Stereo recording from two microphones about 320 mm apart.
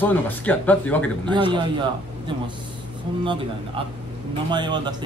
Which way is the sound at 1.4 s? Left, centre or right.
Centre.